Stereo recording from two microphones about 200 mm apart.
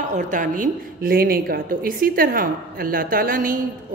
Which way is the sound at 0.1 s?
40° right (ahead or behind).